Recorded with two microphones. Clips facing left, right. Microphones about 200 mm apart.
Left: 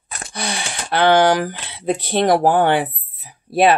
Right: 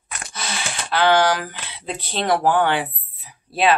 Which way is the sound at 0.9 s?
50° left (ahead or behind).